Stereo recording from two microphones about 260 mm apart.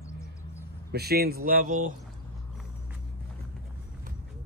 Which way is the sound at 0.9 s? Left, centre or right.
Right.